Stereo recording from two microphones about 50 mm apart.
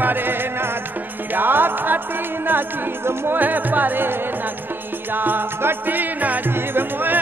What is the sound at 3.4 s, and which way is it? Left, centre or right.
Music, right.